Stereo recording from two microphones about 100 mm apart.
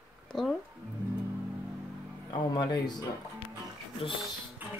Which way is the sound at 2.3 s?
45° left (ahead or behind).